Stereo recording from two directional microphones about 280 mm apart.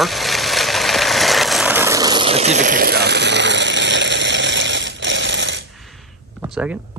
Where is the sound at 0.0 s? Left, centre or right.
Centre; by 5.6 s right.